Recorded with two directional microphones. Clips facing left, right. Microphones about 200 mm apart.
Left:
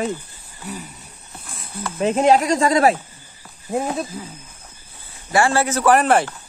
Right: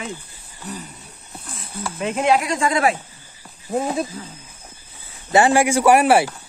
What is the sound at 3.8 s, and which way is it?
Speech, centre (ahead or behind).